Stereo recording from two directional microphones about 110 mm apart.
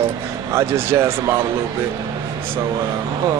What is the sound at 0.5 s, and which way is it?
Speech, 25° right (ahead or behind).